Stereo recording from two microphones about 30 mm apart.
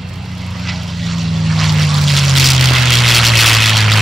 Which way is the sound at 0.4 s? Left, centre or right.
Centre.